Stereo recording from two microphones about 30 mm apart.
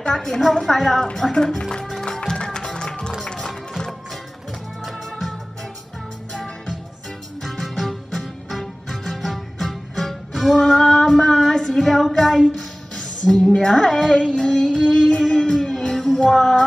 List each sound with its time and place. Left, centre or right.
0.1 s a woman's voice: centre
2.0 s music: left
3.3 s music: centre
7.4 s music: centre
10.6 s female singing: centre
12.2 s a woman's voice: centre
12.9 s music: centre
13.8 s a woman's voice: centre
14.1 s music: left